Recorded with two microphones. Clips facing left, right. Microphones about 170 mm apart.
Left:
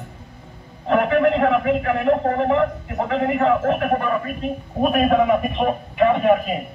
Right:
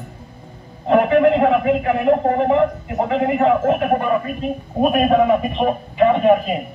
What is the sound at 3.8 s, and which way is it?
A man's voice, 20° right (ahead or behind).